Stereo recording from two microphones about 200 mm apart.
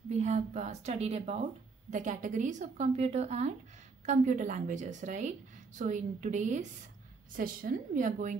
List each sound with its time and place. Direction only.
0.2 s a woman's voice: 35° right (ahead or behind)